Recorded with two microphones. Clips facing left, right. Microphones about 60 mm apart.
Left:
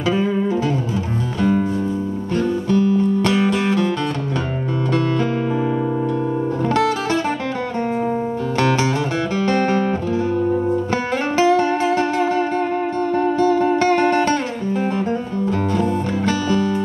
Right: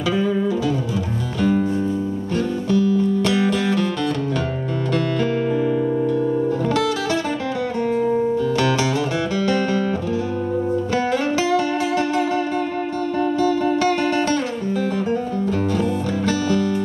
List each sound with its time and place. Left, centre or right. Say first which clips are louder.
1.4 s music: even; left
9.4 s music: left 3 dB; left
11.3 s music: left 4 dB; left
15.8 s music: left 1 dB; left